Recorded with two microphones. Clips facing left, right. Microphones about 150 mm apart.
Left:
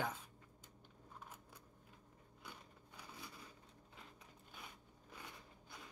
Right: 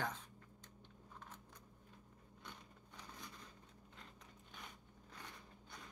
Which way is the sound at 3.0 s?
10° left (ahead or behind).